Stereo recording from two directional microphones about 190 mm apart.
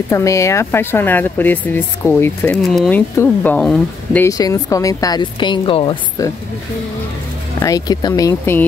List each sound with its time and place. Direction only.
0.1 s speech: 15° left (ahead or behind)
4.3 s a woman's voice: 20° left (ahead or behind)
7.6 s speech: 20° left (ahead or behind)